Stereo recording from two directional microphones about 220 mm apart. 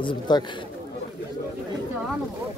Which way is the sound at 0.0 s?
20° left (ahead or behind).